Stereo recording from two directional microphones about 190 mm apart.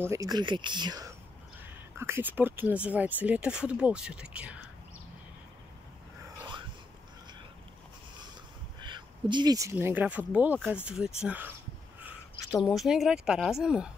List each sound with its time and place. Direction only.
0.1 s speech: 20° right (ahead or behind)
8.8 s speech: 25° right (ahead or behind); by 11.5 s 10° right (ahead or behind)
12.5 s speech: centre (ahead or behind)